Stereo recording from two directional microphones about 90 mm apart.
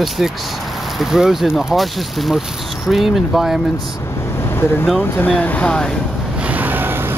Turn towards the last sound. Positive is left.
turn(degrees=-25)  # may be behind; listen again after turning